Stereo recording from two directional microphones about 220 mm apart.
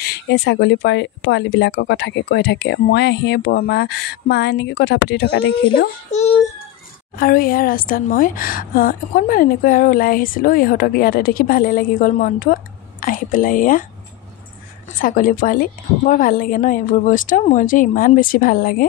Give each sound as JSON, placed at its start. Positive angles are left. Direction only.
{"t": 0.0, "sound": "speech", "side_deg": 50}
{"t": 6.1, "sound": "speech", "side_deg": 30}
{"t": 7.2, "sound": "a woman's voice", "side_deg": 40}
{"t": 15.0, "sound": "a woman's voice", "side_deg": 40}